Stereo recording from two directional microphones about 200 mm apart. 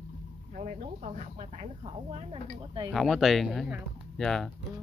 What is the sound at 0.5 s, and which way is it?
Speech, 35° right (ahead or behind).